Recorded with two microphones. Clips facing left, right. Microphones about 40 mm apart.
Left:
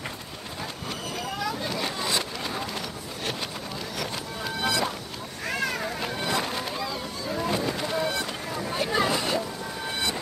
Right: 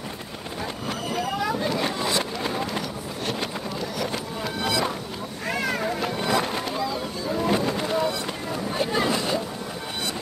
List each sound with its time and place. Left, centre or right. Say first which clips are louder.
1.1 s boat: right 5 dB; centre
1.7 s vehicle: right 4 dB; centre
4.6 s music: right 1 dB; centre
5.7 s boat: right 4 dB; centre
7.4 s boat: right 4 dB; centre
8.7 s a sound: right 1 dB; centre